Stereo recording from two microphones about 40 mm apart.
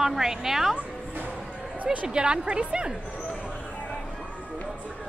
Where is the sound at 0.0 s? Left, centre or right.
Centre.